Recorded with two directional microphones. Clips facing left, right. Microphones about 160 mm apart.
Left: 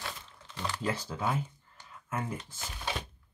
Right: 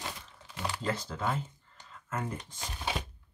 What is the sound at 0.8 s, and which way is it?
Speech, 10° left (ahead or behind).